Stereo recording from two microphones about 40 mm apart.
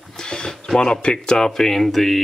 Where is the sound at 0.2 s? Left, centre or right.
Left.